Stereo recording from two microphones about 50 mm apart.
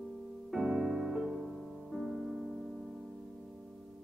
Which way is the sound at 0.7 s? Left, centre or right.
Right.